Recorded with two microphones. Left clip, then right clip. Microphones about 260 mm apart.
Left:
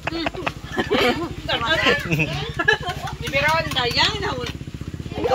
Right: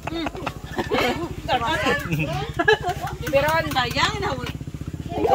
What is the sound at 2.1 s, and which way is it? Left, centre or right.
Speech, centre.